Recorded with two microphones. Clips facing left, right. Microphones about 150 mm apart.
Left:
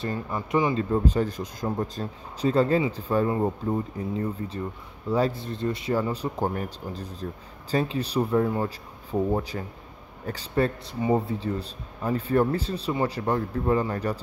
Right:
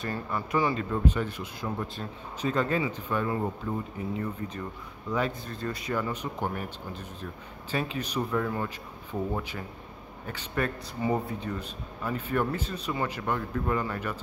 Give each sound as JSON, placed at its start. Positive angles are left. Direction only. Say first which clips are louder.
{"t": 0.0, "sound": "speech", "louder": "left 2 dB", "side_deg": 20}